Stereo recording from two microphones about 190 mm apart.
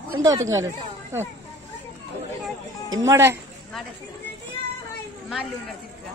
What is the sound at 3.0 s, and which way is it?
Speech, 15° right (ahead or behind).